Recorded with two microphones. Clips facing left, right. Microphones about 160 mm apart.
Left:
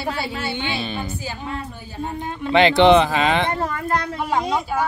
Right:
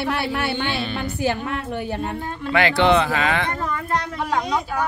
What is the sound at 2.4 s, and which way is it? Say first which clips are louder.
Speech: left 5 dB; 20° left (ahead or behind).